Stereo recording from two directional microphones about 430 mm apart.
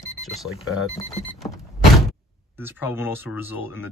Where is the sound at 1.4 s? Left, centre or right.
Centre.